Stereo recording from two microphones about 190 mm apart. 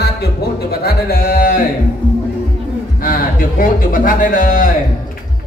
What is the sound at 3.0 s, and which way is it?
Speech, 50° left (ahead or behind).